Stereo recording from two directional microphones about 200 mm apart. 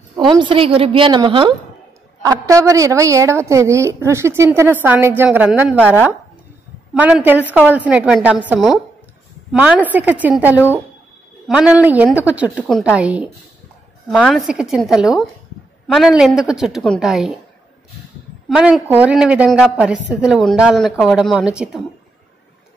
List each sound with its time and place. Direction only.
0.1 s a woman's voice: 25° right (ahead or behind); by 5.8 s 5° right (ahead or behind)
6.9 s a woman's voice: 5° right (ahead or behind)
18.5 s a woman's voice: 5° right (ahead or behind)